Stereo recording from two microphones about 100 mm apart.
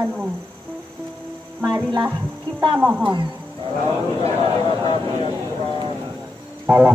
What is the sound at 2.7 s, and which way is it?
Music, 15° right (ahead or behind).